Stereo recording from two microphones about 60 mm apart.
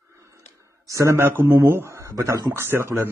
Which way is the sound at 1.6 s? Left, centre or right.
Right.